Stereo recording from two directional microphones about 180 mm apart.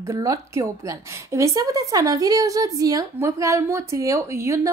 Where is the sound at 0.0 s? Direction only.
15° right (ahead or behind).